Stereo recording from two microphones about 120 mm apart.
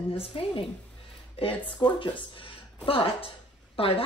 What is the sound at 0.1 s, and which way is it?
Speech, 55° left (ahead or behind).